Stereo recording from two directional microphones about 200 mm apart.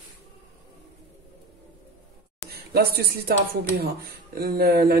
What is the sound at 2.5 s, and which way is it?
Speech, 50° right (ahead or behind).